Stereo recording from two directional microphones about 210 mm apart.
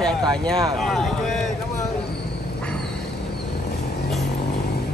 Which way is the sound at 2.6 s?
5° left (ahead or behind).